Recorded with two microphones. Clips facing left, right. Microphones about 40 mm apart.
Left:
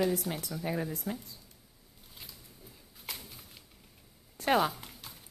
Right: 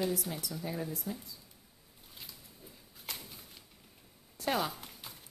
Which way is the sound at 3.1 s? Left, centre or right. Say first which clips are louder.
Left 1 dB; centre.